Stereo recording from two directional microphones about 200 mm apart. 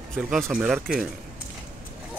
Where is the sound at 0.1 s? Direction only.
Centre (ahead or behind).